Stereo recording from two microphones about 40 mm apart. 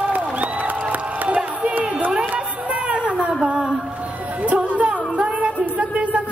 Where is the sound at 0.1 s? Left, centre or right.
Right.